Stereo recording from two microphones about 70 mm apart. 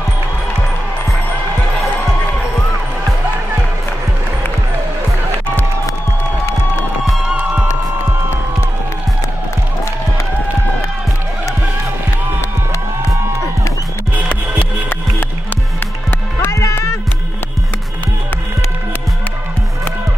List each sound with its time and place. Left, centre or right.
7.3 s music: centre
16.1 s music: left
16.5 s music: left